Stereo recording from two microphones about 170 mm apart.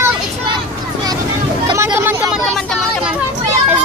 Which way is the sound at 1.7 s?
15° right (ahead or behind).